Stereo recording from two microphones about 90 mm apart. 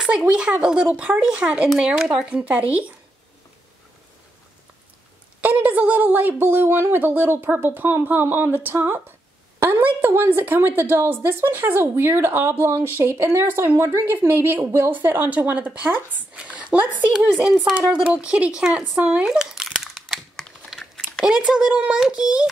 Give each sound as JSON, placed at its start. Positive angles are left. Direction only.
{"t": 0.0, "sound": "a child's voice", "side_deg": -10}
{"t": 5.4, "sound": "a woman's voice", "side_deg": -20}
{"t": 17.3, "sound": "a child's voice", "side_deg": -5}
{"t": 17.9, "sound": "a sound", "side_deg": -15}
{"t": 21.2, "sound": "a child's voice", "side_deg": -5}